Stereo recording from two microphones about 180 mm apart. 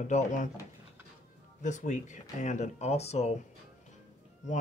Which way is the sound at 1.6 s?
40° left (ahead or behind).